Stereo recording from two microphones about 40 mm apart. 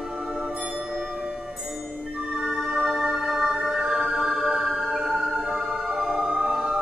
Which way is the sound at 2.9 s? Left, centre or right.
Centre.